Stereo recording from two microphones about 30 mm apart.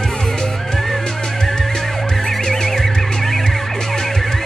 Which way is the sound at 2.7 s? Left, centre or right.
Centre.